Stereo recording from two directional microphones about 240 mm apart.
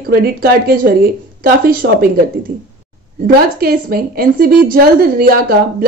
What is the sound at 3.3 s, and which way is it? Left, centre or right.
A woman's voice, right.